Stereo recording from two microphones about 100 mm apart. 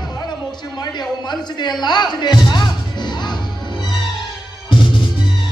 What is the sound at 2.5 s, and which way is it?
Music, 45° left (ahead or behind).